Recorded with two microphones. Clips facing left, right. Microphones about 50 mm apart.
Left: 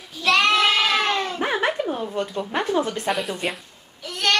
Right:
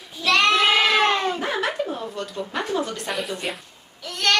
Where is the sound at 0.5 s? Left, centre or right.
Centre.